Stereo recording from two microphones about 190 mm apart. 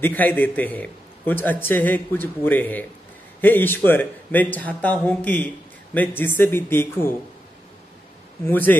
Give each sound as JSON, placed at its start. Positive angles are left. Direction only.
{"t": 0.0, "sound": "a man's voice", "side_deg": 10}
{"t": 8.5, "sound": "a man's voice", "side_deg": 10}